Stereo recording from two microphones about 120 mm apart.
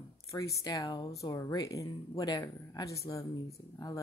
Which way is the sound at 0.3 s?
25° left (ahead or behind).